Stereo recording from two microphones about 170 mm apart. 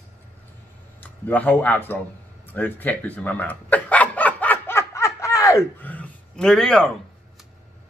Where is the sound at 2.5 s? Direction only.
10° left (ahead or behind).